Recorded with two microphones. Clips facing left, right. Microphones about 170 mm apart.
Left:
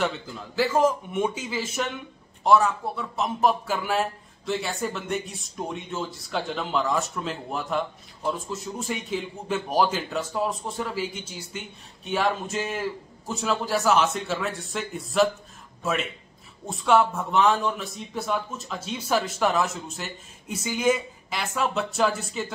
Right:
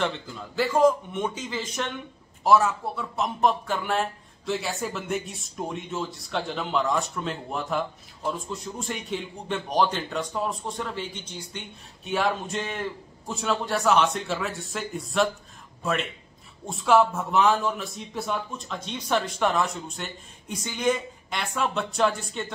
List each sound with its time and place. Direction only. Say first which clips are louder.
0.6 s a man's voice: right 1 dB; 5° left (ahead or behind)